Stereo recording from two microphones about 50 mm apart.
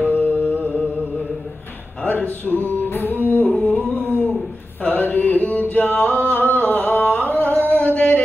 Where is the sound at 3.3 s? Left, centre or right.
Left.